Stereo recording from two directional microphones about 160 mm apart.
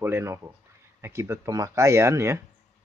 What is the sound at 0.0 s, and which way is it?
Speech, 15° right (ahead or behind).